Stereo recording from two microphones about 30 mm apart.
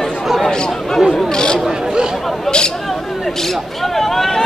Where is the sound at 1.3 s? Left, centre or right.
Left.